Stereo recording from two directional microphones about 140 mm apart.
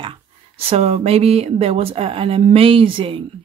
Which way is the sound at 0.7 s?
45° right (ahead or behind).